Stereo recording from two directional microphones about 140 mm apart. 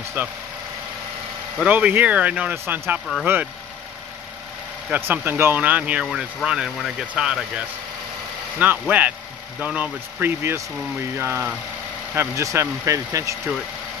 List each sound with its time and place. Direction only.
0.2 s speech: 15° right (ahead or behind)
1.6 s speech: 10° right (ahead or behind)
4.9 s speech: 15° right (ahead or behind)
8.5 s speech: 10° right (ahead or behind)